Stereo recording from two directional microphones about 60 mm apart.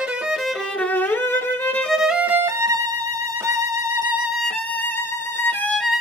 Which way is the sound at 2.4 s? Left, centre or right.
Right.